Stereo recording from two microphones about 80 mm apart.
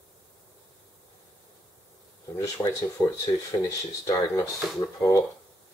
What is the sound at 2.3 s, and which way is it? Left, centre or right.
Speech, left.